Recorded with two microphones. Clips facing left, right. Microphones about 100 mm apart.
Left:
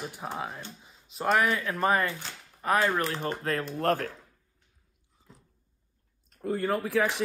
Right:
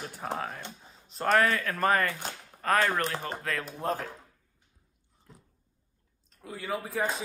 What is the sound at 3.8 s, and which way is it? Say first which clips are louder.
Speech: left 5 dB; 75° left (ahead or behind).